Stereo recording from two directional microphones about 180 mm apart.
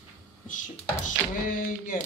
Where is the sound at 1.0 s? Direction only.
50° left (ahead or behind).